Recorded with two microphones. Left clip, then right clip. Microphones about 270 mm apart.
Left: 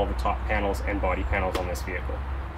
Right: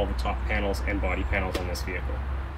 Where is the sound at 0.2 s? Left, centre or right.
Centre.